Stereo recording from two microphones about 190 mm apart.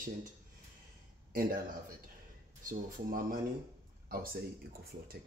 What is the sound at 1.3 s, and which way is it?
Speech, 50° right (ahead or behind).